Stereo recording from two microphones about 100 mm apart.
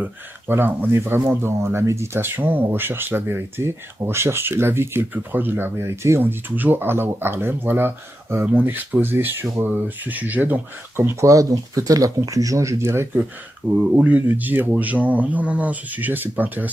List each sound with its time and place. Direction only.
0.0 s speech: 20° right (ahead or behind)
13.1 s speech: 15° right (ahead or behind)